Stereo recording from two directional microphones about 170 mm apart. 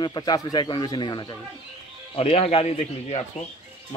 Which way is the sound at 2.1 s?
35° left (ahead or behind).